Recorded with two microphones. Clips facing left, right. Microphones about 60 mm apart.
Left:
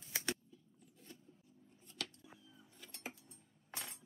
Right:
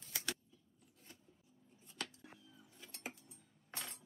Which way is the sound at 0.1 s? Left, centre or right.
Left.